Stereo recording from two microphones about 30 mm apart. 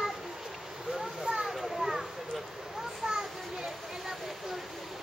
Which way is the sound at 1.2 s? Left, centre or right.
Centre.